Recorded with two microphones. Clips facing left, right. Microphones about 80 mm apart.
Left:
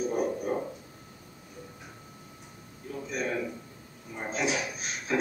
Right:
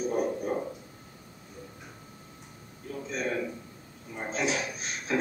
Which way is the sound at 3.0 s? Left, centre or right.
Centre.